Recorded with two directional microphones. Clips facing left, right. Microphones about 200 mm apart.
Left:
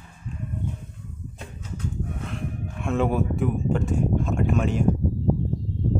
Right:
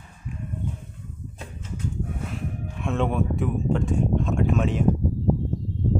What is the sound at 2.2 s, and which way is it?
Speech, centre (ahead or behind).